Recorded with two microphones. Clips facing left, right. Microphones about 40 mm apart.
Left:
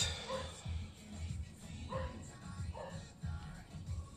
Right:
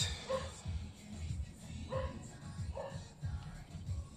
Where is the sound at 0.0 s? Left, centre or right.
Left.